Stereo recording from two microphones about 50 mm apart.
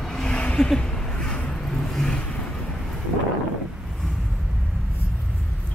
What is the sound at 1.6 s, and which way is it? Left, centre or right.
Vehicle, centre.